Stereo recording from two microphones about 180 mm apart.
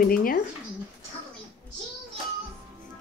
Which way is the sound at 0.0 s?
55° left (ahead or behind).